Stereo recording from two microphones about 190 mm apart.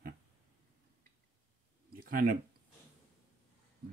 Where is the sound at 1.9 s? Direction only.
50° right (ahead or behind).